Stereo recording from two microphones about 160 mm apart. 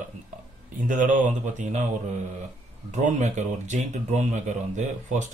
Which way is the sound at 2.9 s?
50° right (ahead or behind).